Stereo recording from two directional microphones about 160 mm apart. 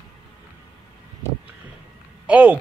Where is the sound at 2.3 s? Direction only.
10° right (ahead or behind).